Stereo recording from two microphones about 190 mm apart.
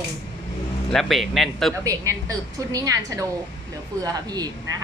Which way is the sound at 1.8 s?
20° right (ahead or behind).